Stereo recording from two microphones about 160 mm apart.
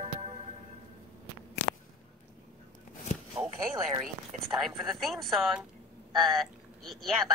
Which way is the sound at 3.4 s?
10° right (ahead or behind).